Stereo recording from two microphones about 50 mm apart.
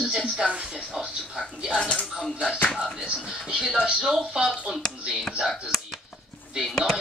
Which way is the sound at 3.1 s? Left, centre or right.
Centre.